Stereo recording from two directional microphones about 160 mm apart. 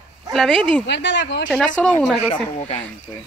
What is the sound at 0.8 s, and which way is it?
Speech, 90° left.